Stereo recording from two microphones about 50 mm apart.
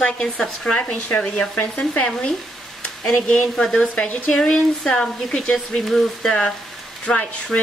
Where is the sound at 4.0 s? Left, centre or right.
Left.